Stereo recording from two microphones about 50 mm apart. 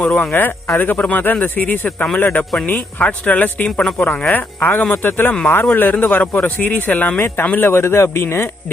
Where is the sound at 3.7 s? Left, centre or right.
Centre.